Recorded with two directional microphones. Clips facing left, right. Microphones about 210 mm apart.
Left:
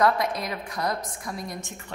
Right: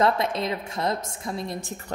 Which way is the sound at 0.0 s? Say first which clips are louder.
Right 1 dB; 25° right (ahead or behind).